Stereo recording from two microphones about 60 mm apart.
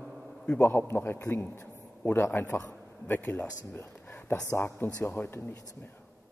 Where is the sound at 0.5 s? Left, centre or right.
Left.